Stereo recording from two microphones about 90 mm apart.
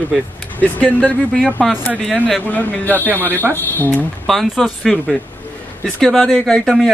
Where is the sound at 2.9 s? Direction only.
20° right (ahead or behind).